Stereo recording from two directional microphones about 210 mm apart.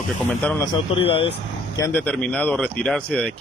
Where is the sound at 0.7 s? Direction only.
25° left (ahead or behind).